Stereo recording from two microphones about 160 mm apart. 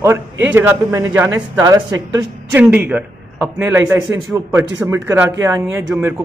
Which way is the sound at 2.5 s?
10° right (ahead or behind).